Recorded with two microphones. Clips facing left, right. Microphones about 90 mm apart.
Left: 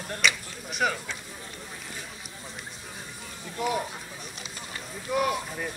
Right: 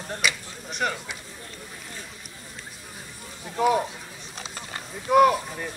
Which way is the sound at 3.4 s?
50° right (ahead or behind).